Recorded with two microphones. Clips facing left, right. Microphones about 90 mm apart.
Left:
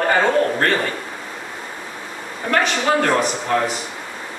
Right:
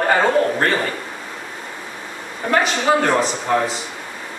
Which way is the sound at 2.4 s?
15° right (ahead or behind).